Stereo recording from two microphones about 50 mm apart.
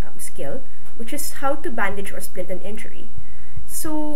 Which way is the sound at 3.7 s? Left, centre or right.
Centre.